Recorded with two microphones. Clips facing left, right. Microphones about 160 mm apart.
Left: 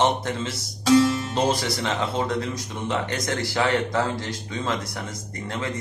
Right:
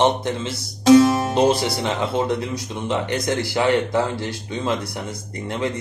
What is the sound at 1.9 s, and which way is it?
A man's voice, 15° right (ahead or behind).